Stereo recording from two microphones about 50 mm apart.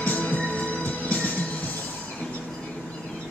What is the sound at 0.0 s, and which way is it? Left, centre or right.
Music, left.